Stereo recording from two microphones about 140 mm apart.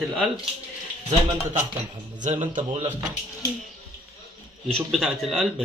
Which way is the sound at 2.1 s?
60° right (ahead or behind).